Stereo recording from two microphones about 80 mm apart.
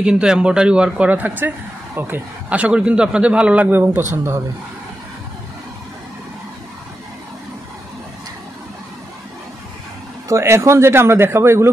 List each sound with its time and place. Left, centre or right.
0.0 s speech: centre; by 2.2 s right
2.5 s speech: centre
3.7 s speech: right
10.2 s speech: right